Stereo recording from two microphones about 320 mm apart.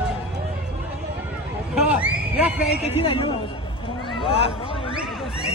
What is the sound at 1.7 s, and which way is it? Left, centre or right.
Speech, centre.